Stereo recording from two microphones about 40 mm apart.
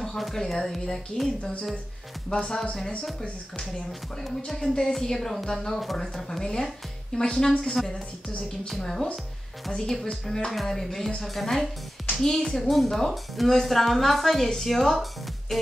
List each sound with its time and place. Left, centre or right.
0.2 s a woman's voice: centre
2.4 s speech: centre
4.9 s speech: centre
5.8 s a woman's voice: centre
6.4 s speech: centre
10.5 s a woman's voice: centre
15.5 s music: centre